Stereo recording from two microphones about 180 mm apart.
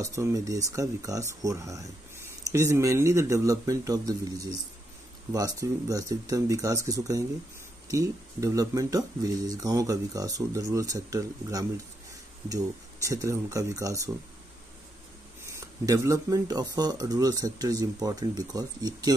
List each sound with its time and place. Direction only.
0.0 s speech: 15° right (ahead or behind)
15.4 s speech: 15° right (ahead or behind)